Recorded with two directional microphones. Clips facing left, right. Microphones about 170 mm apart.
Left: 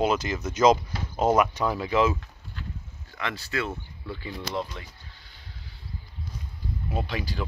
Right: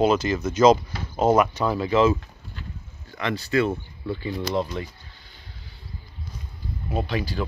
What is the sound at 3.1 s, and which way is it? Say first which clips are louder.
Speech: right 8 dB; 5° left (ahead or behind).